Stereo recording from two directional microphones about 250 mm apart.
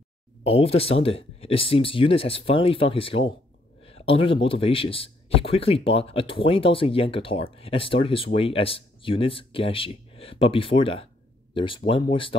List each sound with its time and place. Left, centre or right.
0.4 s speech: left